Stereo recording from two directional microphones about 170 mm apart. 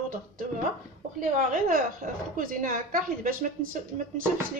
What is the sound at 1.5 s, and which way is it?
A woman's voice, 55° right (ahead or behind).